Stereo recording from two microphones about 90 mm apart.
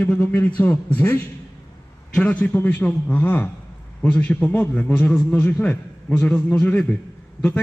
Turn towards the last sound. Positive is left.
turn(degrees=15)  # may be behind; listen again after turning